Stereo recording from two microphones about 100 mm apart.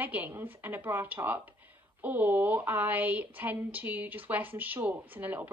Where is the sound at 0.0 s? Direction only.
15° right (ahead or behind).